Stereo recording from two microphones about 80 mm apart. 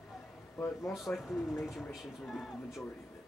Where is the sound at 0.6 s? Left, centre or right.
Centre.